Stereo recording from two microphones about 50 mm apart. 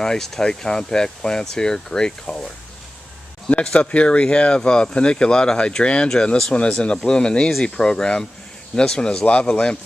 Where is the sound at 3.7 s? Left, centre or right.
Left.